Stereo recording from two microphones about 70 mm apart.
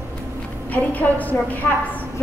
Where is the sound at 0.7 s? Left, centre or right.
Left.